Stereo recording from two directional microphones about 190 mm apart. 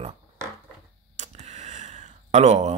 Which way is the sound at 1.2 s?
35° right (ahead or behind).